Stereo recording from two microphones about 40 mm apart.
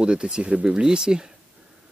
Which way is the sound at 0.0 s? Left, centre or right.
Right.